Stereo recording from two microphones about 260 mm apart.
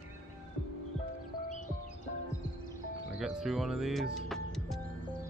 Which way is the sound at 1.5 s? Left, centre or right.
Left.